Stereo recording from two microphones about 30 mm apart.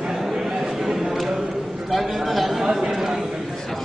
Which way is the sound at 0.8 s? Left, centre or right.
Centre.